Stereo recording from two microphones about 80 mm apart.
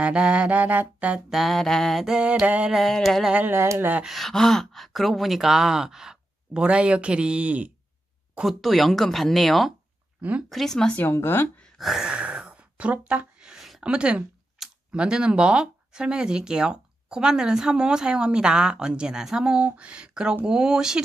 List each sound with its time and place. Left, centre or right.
0.0 s speech: centre
1.3 s speech: centre
2.1 s speech: centre
2.7 s speech: centre
3.3 s speech: right
4.0 s speech: centre
8.5 s speech: centre
11.0 s speech: left
11.8 s speech: centre
12.1 s a sound: centre
13.8 s speech: centre